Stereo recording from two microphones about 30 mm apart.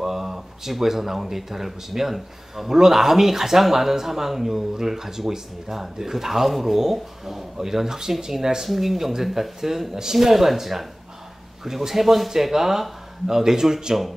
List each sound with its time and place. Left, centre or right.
0.0 s speech: centre
8.6 s speech: centre; by 13.9 s right